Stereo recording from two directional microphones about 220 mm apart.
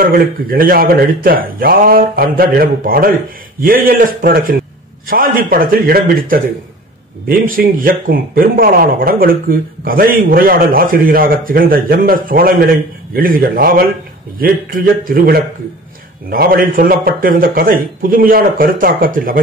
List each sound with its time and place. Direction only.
0.0 s a man's voice: 40° right (ahead or behind)